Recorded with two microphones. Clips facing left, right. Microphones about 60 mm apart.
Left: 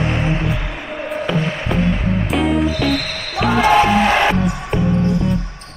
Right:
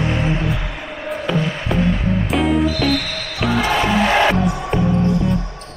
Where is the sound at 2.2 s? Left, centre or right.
Centre.